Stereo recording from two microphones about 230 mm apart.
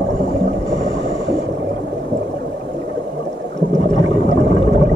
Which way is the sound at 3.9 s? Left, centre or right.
Left.